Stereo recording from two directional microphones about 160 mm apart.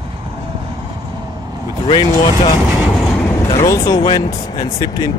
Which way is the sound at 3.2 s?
20° left (ahead or behind).